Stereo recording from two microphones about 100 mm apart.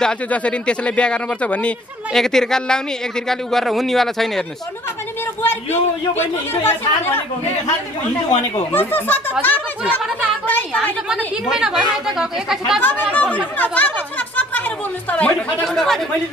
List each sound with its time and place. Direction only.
0.0 s speech: 10° left (ahead or behind)
5.4 s speech: 20° left (ahead or behind)
8.7 s speech: 20° left (ahead or behind)
11.4 s speech: 5° right (ahead or behind)
13.1 s speech: 15° left (ahead or behind)